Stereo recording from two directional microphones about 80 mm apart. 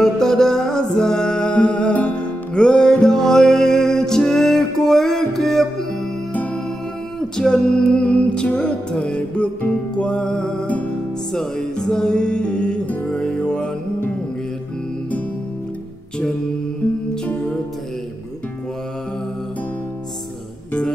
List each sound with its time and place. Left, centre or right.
0.0 s music: centre
6.3 s music: centre
7.2 s music: centre
17.1 s music: centre